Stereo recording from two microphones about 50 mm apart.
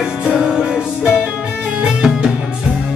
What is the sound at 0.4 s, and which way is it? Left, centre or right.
Music, centre.